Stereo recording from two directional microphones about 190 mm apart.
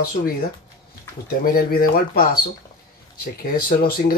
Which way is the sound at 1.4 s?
50° left (ahead or behind).